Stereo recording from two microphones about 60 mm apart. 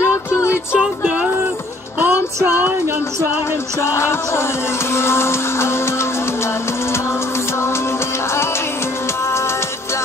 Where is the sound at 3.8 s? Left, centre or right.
Left.